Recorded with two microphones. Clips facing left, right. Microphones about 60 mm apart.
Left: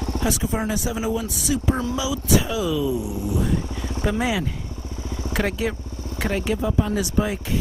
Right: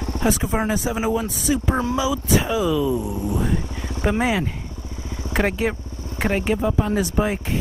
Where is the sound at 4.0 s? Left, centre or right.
Right.